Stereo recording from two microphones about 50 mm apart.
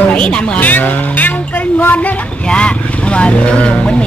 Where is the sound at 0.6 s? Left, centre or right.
Left.